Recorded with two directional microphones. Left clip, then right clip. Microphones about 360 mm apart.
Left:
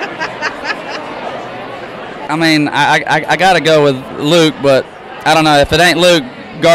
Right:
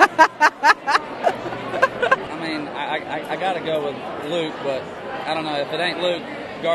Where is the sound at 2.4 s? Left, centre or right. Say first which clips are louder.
Left 16 dB; left.